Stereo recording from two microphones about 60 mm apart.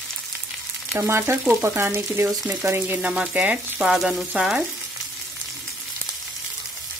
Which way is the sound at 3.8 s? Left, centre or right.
Centre.